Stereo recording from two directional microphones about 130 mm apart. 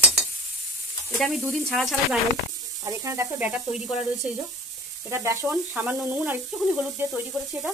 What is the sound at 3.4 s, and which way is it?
Frying, 10° right (ahead or behind).